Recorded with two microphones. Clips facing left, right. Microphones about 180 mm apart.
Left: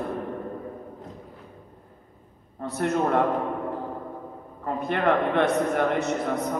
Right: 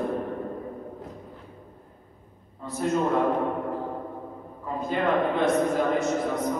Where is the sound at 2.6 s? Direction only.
65° left (ahead or behind).